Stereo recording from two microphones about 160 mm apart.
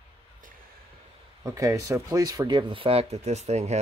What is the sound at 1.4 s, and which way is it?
Speech, 20° right (ahead or behind).